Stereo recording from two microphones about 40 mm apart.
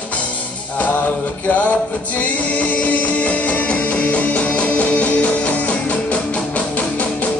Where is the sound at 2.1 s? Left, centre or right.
Left.